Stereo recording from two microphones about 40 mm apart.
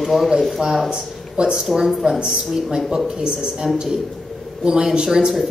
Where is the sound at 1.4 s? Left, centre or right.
Right.